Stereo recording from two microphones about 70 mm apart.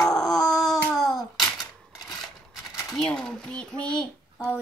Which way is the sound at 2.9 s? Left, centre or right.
Centre.